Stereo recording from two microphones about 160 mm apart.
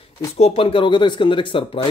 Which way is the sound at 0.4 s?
40° left (ahead or behind).